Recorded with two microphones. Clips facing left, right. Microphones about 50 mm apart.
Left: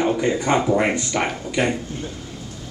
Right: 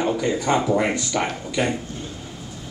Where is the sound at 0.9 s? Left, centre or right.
Left.